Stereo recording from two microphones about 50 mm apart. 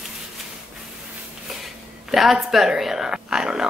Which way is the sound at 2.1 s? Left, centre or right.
Centre.